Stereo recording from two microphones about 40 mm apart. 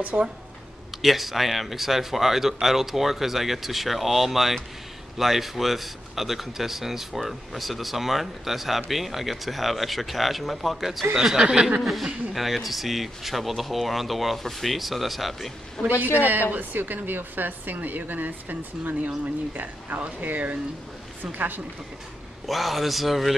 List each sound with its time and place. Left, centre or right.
0.0 s speech: right
1.0 s speech: centre
11.3 s speech: right
11.8 s speech: centre
16.5 s a woman's voice: right
22.5 s speech: centre